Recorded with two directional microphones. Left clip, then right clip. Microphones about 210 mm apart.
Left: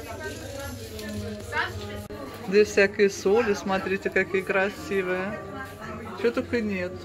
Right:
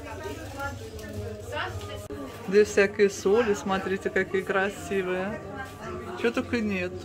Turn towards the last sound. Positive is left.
turn(degrees=-5)  # may be behind; listen again after turning